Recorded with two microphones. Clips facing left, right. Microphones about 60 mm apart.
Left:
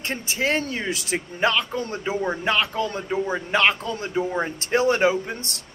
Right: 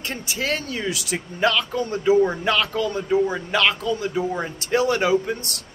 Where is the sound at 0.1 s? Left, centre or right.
Left.